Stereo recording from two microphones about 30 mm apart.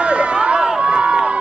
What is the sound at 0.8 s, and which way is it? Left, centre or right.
Crowd, right.